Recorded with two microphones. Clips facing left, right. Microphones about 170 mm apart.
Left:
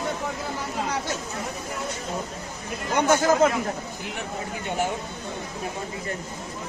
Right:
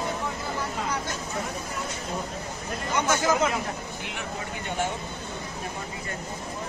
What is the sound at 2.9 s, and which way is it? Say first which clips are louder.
Speech: left 5 dB; 55° left (ahead or behind).